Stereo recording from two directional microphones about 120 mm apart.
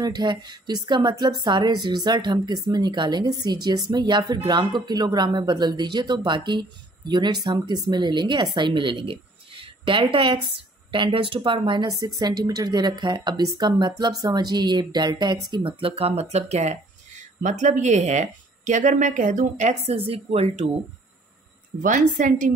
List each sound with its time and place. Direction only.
0.0 s a woman's voice: 35° right (ahead or behind); by 20.7 s 60° right (ahead or behind)
21.8 s a woman's voice: 90° right